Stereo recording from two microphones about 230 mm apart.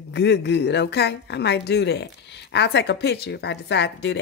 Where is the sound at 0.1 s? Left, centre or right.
Left.